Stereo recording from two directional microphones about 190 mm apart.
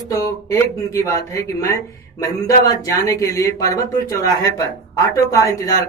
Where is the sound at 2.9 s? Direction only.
15° left (ahead or behind).